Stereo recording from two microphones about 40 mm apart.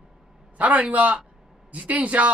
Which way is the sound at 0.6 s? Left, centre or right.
Right.